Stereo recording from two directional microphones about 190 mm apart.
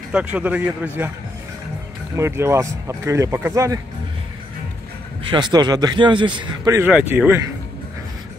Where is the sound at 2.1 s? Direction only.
15° right (ahead or behind).